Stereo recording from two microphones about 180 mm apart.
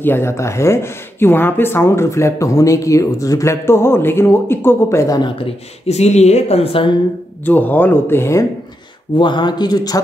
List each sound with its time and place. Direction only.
0.0 s speech: 15° left (ahead or behind)
5.9 s a woman's voice: 35° left (ahead or behind)
7.4 s speech: 10° left (ahead or behind)